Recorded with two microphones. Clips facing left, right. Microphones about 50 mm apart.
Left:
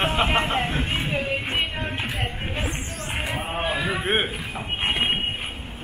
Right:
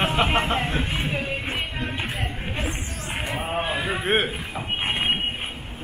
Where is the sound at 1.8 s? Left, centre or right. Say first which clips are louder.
Left 1 dB; centre.